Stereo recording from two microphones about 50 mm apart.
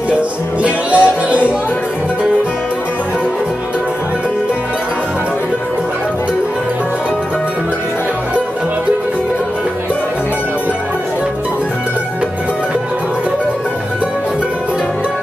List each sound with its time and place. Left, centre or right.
0.6 s music: right